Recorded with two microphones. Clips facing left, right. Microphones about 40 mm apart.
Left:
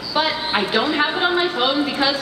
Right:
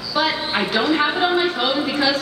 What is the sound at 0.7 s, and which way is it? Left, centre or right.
A woman's voice, centre.